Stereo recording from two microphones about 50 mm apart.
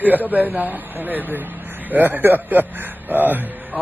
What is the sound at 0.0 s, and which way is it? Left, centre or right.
A man's voice, right.